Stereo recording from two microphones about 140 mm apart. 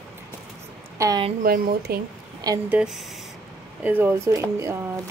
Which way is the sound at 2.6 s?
5° right (ahead or behind).